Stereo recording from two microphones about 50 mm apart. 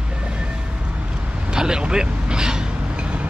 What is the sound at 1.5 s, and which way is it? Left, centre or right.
Speech, centre.